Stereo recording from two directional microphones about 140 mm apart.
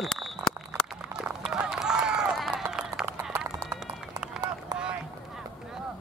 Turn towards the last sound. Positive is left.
turn(degrees=-5)  # may be behind; listen again after turning